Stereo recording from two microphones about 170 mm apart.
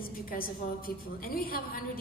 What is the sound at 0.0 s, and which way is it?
A woman's voice, 60° left (ahead or behind).